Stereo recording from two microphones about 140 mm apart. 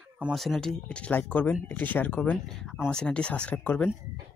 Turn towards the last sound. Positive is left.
turn(degrees=10)  # may be behind; listen again after turning